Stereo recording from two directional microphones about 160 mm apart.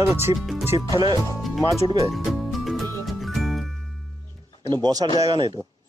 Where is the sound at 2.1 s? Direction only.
Centre (ahead or behind).